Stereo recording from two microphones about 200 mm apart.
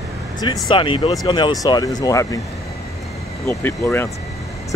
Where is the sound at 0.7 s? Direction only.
25° left (ahead or behind).